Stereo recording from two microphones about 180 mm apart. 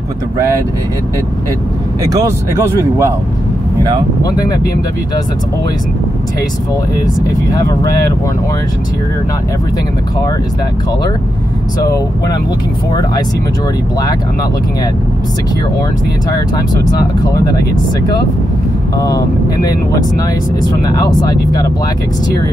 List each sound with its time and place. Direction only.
2.1 s speech: 15° right (ahead or behind)
4.2 s speech: 20° left (ahead or behind)
11.8 s speech: 20° left (ahead or behind)
17.2 s speech: 20° left (ahead or behind)
18.9 s speech: 20° left (ahead or behind)